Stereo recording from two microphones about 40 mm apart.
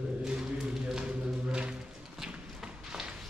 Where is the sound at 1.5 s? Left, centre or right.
Right.